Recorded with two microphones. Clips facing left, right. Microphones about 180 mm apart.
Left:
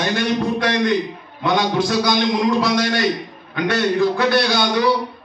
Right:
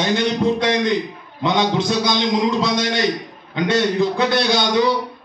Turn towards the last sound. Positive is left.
turn(degrees=-20)  # may be behind; listen again after turning